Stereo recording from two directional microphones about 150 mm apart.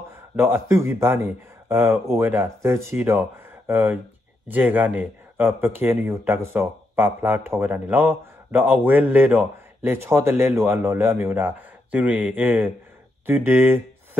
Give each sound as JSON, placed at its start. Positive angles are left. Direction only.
{"t": 0.4, "sound": "speech", "side_deg": -15}